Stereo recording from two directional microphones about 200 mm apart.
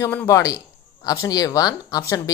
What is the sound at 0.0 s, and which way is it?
Speech, 10° left (ahead or behind).